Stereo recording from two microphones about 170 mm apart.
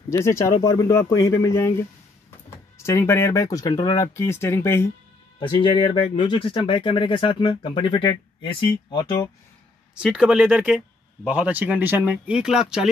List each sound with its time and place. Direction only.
0.1 s speech: 15° left (ahead or behind)
5.4 s speech: 30° left (ahead or behind)
9.9 s speech: 5° right (ahead or behind)